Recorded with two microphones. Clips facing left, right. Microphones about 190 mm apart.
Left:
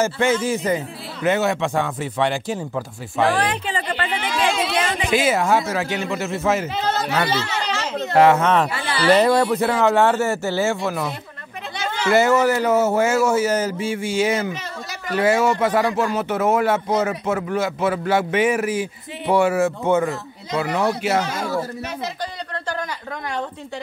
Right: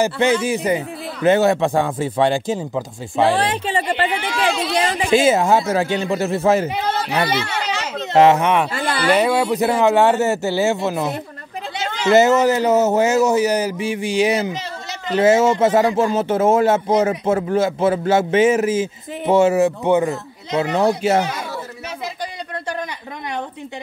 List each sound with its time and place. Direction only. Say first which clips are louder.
0.0 s speech: right 2 dB; 15° right (ahead or behind)
1.2 s a man's voice: right 5 dB; 30° right (ahead or behind)
6.7 s speech: right 1 dB; 15° right (ahead or behind)
8.7 s a sound: right 1 dB; 50° right (ahead or behind)
9.1 s a man's voice: left 2 dB; 10° right (ahead or behind); by 21.2 s 30° right (ahead or behind)